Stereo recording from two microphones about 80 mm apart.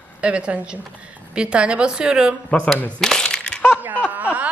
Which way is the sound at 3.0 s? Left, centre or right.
Centre.